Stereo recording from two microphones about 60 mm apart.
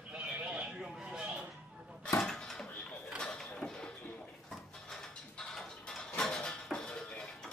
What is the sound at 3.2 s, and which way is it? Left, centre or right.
Mechanisms, centre.